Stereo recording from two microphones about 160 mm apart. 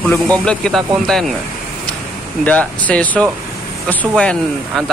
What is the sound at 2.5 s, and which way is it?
Speech, 10° left (ahead or behind).